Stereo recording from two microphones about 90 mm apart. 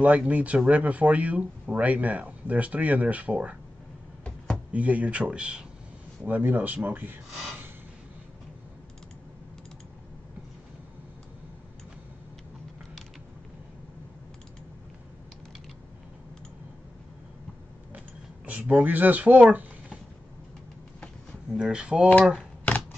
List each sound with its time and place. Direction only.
0.0 s speech: 15° right (ahead or behind)
4.7 s speech: 15° right (ahead or behind)
17.9 s a sound: 15° right (ahead or behind)
21.5 s speech: 10° right (ahead or behind)
22.7 s typewriter: 20° left (ahead or behind)